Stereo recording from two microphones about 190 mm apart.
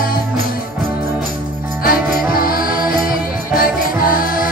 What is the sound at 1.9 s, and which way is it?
Music, 50° left (ahead or behind).